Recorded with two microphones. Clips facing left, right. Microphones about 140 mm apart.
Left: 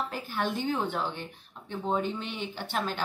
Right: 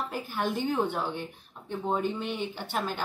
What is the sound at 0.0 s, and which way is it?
Speech, 10° right (ahead or behind).